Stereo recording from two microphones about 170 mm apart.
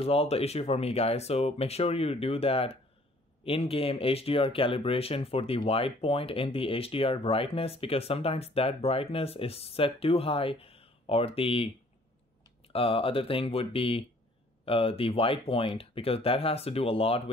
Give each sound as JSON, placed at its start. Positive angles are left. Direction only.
{"t": 0.0, "sound": "speech", "side_deg": 35}